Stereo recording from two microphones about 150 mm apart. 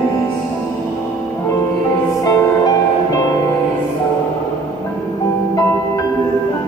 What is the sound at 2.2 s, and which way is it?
Music, 20° left (ahead or behind).